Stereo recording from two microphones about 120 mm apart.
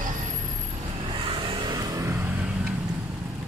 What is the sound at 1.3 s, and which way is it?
Vehicle, 45° right (ahead or behind).